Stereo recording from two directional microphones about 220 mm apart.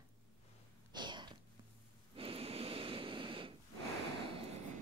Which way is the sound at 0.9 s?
20° right (ahead or behind).